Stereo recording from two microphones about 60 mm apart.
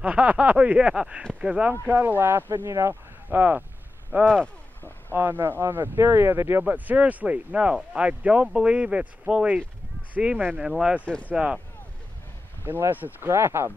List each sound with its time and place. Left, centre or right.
0.0 s speech: right
1.7 s speech: right
2.9 s speech: right
6.6 s speech: right
10.6 s speech: centre
11.1 s speech: centre
12.6 s speech: right
13.3 s speech: right